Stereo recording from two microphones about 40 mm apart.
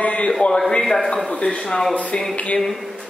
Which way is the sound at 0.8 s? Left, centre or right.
Centre.